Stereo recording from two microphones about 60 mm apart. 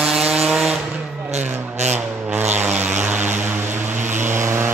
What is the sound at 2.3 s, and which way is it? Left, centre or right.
Vehicle, right.